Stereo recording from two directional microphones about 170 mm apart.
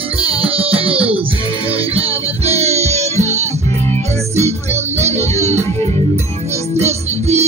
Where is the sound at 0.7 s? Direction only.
35° right (ahead or behind).